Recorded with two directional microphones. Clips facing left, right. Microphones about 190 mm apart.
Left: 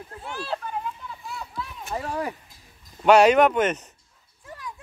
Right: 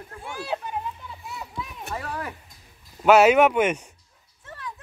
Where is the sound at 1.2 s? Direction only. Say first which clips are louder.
Even; 20° right (ahead or behind).